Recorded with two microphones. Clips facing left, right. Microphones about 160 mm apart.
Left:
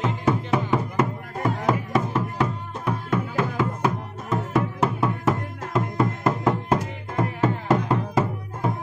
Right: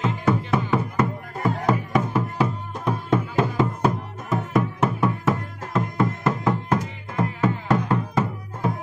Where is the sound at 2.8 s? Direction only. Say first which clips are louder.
Right 3 dB; 25° right (ahead or behind).